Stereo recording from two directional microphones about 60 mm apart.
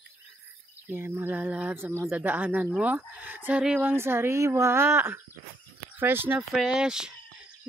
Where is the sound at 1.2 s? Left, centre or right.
Right.